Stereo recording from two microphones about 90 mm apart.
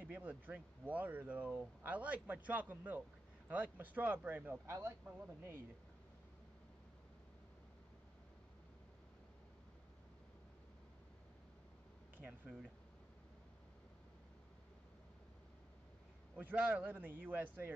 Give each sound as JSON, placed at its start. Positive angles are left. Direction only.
{"t": 0.0, "sound": "speech", "side_deg": -20}
{"t": 12.4, "sound": "speech", "side_deg": -5}
{"t": 16.3, "sound": "speech", "side_deg": -20}